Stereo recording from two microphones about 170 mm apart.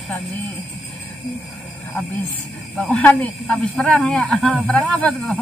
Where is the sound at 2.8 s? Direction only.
5° left (ahead or behind).